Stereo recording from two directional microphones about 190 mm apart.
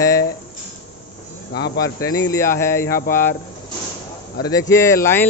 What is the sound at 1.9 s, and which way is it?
Speech, 15° left (ahead or behind).